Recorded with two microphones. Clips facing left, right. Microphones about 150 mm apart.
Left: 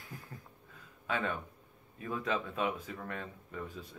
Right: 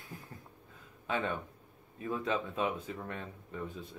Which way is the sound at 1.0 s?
25° right (ahead or behind).